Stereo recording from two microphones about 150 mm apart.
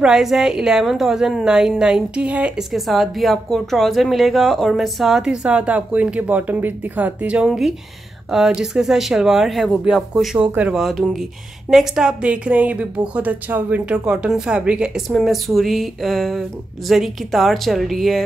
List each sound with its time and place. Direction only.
0.0 s a woman's voice: 5° right (ahead or behind)